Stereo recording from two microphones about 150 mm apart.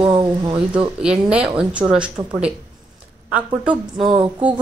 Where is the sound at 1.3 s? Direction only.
5° right (ahead or behind).